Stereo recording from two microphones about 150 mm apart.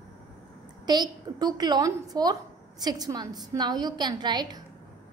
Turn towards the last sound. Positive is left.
turn(degrees=-30)  # may be behind; listen again after turning